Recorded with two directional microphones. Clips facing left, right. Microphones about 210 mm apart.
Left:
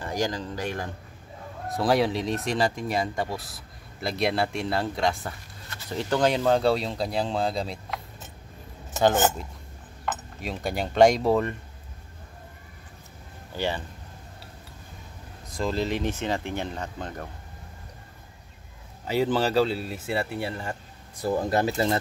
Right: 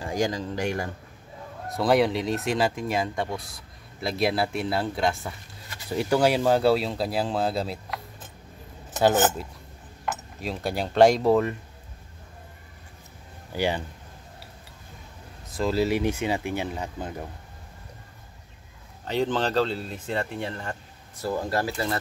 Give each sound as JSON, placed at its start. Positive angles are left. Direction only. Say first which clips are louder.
{"t": 0.2, "sound": "speech", "louder": "right 3 dB", "side_deg": -10}
{"t": 1.7, "sound": "speech", "louder": "right 2 dB", "side_deg": 0}
{"t": 9.0, "sound": "speech", "louder": "right 1 dB", "side_deg": -5}
{"t": 13.5, "sound": "speech", "louder": "right 3 dB", "side_deg": -10}
{"t": 15.5, "sound": "speech", "louder": "right 3 dB", "side_deg": -5}
{"t": 19.0, "sound": "speech", "louder": "left 1 dB", "side_deg": 10}
{"t": 21.2, "sound": "speech", "louder": "left 3 dB", "side_deg": 20}